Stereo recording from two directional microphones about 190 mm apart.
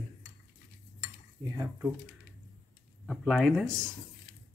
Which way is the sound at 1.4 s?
15° right (ahead or behind).